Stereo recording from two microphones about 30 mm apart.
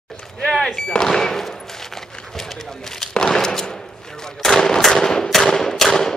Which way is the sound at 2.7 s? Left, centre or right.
Centre.